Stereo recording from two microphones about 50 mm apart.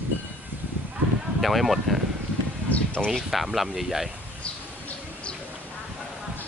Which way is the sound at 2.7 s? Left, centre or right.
Left.